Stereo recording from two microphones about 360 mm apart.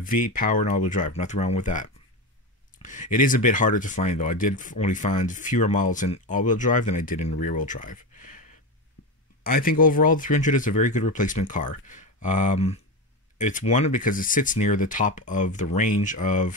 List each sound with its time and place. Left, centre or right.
0.0 s speech: left
9.4 s speech: left